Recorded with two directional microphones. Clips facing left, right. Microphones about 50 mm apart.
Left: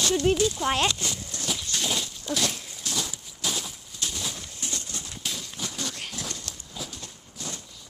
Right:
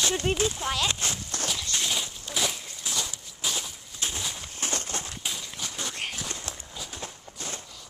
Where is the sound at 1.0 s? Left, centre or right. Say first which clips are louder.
Right 2 dB; right.